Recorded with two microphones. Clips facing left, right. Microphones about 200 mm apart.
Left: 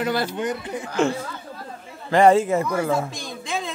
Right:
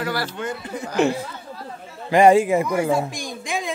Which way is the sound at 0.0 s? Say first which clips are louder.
Left 3 dB; 20° left (ahead or behind).